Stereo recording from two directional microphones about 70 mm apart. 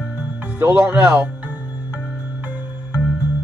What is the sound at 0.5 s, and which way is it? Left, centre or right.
Speech, right.